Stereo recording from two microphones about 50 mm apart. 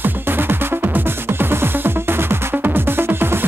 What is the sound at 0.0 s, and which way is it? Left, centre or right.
Music, right.